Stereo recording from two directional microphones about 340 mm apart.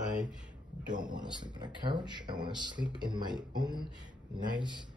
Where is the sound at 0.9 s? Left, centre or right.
Centre.